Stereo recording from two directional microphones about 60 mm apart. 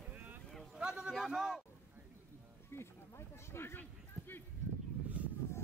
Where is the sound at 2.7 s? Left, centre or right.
Left.